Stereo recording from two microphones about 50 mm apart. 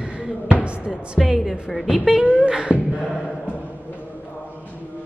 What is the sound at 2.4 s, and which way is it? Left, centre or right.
Beatboxing, right.